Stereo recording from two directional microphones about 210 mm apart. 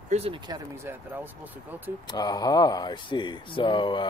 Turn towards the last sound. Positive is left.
turn(degrees=20)  # may be behind; listen again after turning